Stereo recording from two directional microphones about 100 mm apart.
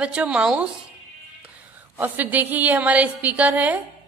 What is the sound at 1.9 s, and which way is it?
A woman's voice, 20° right (ahead or behind).